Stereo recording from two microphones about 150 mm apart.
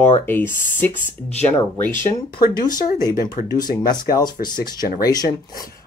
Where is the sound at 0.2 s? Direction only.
15° left (ahead or behind).